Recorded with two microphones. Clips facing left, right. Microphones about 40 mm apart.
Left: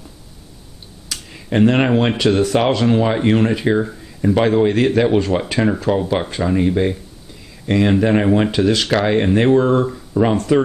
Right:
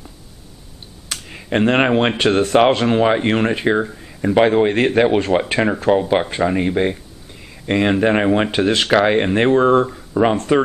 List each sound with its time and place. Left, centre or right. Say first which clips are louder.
1.3 s speech: left 1 dB; right
2.1 s speech: right 1 dB; right
8.5 s speech: even; right
9.8 s speech: even; centre
10.3 s speech: left 1 dB; right